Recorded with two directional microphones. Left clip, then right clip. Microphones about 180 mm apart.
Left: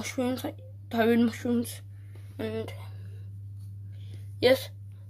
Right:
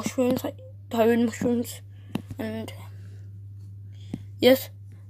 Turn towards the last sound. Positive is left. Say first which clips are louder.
# right 4 dB
turn(degrees=-10)  # may be behind; listen again after turning